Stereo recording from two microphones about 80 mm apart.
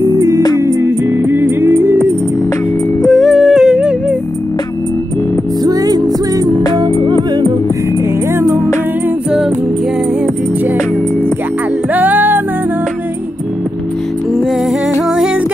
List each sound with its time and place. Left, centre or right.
0.7 s music: right
3.1 s humming: centre
5.6 s music: right
11.9 s music: right